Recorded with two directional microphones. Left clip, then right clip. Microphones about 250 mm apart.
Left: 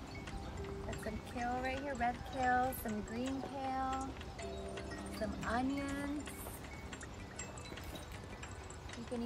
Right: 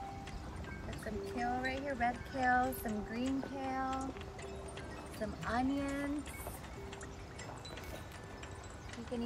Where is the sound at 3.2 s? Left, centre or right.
Centre.